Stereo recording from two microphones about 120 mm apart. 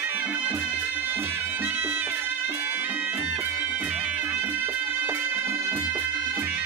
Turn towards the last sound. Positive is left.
turn(degrees=-15)  # may be behind; listen again after turning